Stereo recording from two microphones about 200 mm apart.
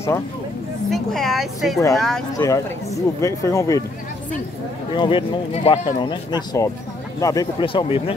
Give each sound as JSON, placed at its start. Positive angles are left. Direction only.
{"t": 0.8, "sound": "a woman's voice", "side_deg": 0}
{"t": 2.3, "sound": "speech", "side_deg": 15}
{"t": 4.9, "sound": "speech", "side_deg": 25}